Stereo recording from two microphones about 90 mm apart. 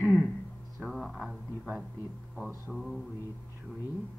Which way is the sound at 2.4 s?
20° right (ahead or behind).